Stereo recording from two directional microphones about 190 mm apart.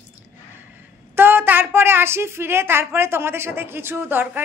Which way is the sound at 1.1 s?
10° right (ahead or behind).